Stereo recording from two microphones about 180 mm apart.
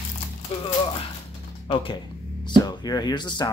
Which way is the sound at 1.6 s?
30° left (ahead or behind).